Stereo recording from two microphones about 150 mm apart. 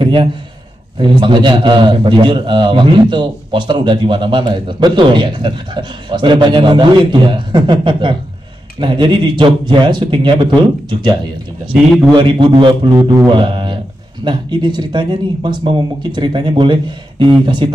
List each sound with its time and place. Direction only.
0.0 s a man's voice: 35° right (ahead or behind)
12.1 s a man's voice: 30° right (ahead or behind)